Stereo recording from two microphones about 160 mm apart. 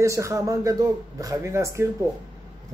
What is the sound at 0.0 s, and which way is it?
Speech, 20° right (ahead or behind).